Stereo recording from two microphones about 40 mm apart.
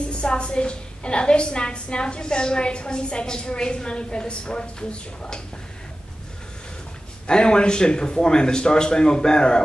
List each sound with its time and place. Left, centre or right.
0.1 s a woman's voice: left
7.2 s a woman's voice: left